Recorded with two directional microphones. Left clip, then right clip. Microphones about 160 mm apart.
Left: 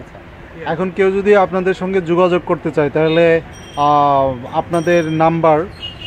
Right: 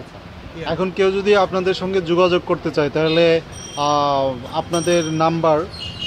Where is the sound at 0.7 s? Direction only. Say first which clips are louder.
Left 3 dB; 5° left (ahead or behind).